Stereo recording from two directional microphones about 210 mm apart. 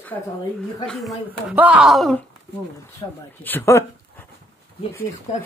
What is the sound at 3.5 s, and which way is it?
Speech, 10° left (ahead or behind).